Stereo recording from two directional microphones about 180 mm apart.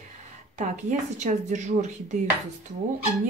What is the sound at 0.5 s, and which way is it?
Speech, 40° right (ahead or behind).